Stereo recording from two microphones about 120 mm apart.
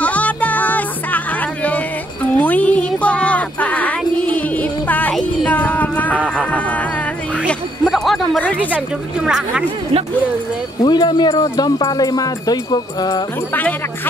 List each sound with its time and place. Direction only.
0.0 s music: 10° left (ahead or behind)
7.8 s a sound: centre (ahead or behind)
8.7 s speech: 10° right (ahead or behind)
10.8 s speech: 40° left (ahead or behind)
13.5 s jingle bell: 15° left (ahead or behind)